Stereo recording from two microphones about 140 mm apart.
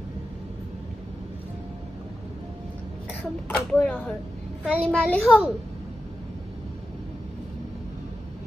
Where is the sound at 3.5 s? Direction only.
5° left (ahead or behind).